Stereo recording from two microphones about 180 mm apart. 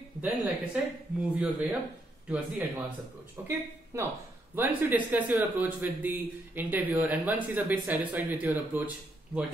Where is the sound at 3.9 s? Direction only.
15° right (ahead or behind).